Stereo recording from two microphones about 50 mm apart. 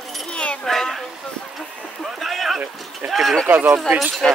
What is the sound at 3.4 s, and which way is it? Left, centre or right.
Speech, right.